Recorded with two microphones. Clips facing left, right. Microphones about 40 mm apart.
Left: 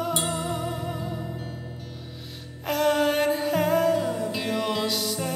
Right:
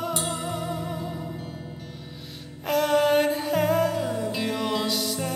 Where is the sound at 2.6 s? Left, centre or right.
Centre.